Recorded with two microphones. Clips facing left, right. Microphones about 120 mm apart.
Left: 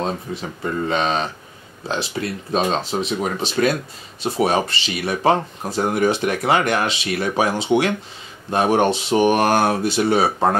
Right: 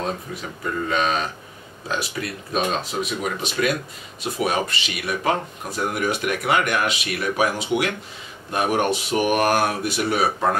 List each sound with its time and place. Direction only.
0.3 s speech: 30° left (ahead or behind)